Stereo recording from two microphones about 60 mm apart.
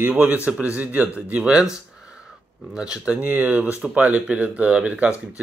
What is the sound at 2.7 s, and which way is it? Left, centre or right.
Speech, centre.